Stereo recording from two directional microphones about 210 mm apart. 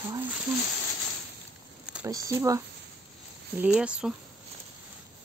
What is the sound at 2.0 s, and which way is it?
Speech, 15° right (ahead or behind).